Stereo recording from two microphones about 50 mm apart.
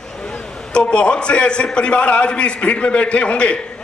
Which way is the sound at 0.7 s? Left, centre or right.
Left.